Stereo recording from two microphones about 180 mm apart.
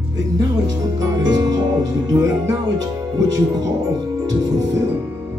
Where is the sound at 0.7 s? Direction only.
20° right (ahead or behind).